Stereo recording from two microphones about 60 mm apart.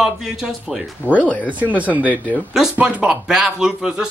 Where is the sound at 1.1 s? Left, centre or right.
Left.